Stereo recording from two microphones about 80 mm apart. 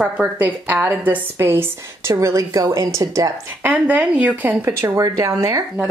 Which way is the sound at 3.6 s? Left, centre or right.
Centre.